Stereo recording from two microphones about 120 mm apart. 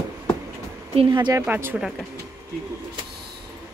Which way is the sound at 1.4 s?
15° right (ahead or behind).